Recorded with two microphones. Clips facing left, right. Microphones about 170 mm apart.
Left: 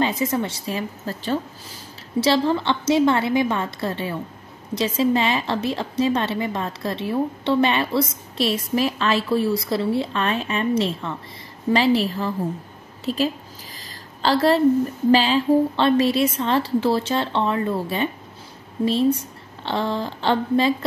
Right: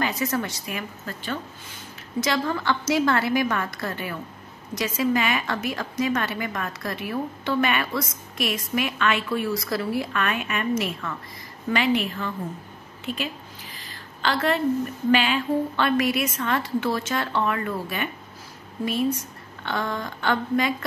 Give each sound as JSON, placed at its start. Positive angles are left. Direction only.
{"t": 0.0, "sound": "a woman's voice", "side_deg": 25}
{"t": 19.6, "sound": "a woman's voice", "side_deg": 30}